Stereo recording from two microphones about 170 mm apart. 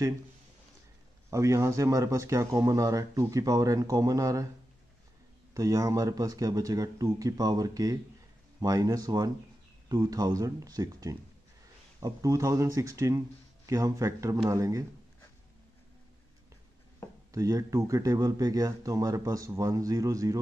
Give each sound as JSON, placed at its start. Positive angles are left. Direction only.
{"t": 1.3, "sound": "speech", "side_deg": -20}
{"t": 5.5, "sound": "speech", "side_deg": -20}
{"t": 17.3, "sound": "speech", "side_deg": -20}